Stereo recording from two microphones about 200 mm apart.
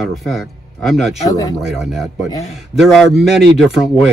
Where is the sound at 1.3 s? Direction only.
20° left (ahead or behind).